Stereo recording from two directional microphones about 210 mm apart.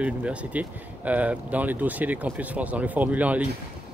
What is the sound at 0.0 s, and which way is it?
Speech, 5° right (ahead or behind).